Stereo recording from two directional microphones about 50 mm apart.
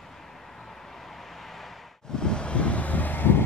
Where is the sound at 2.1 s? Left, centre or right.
Centre; by 3.4 s left.